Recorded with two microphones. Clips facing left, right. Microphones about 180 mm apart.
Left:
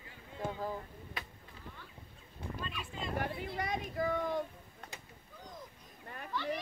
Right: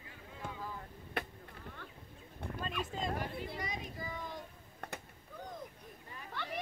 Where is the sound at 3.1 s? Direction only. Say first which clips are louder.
Left 3 dB; 60° left (ahead or behind).